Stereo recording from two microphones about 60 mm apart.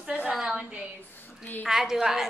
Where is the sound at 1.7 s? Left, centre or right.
Centre.